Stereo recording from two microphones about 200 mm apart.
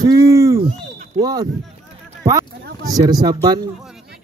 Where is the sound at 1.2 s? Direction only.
20° right (ahead or behind).